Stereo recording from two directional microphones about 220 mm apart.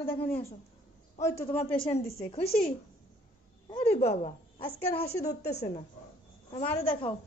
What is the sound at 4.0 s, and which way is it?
A woman's voice, 30° left (ahead or behind).